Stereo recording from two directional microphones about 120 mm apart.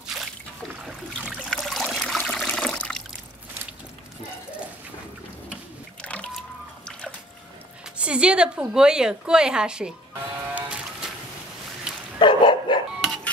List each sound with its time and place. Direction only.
0.0 s a sound: centre (ahead or behind)
1.5 s trickle: centre (ahead or behind)
6.0 s water: 10° left (ahead or behind)
8.0 s a woman's voice: 10° right (ahead or behind)
10.5 s a sound: 10° right (ahead or behind)
12.2 s dog: 40° left (ahead or behind)